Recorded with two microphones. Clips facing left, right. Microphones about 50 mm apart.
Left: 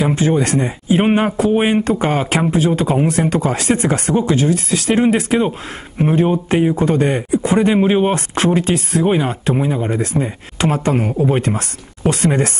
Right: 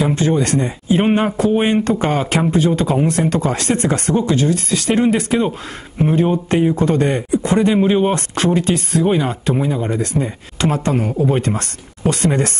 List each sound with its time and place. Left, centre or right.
0.0 s speech: centre